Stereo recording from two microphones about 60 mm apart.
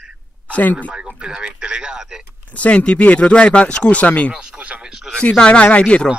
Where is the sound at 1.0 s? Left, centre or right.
Centre.